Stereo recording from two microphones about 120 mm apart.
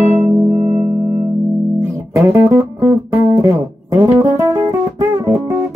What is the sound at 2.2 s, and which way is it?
Music, 25° right (ahead or behind).